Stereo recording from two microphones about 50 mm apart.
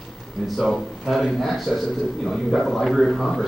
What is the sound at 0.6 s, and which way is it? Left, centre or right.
A man's voice, centre.